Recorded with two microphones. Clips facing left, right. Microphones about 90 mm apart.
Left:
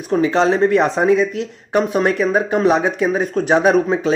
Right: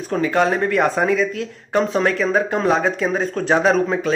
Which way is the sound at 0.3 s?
25° left (ahead or behind).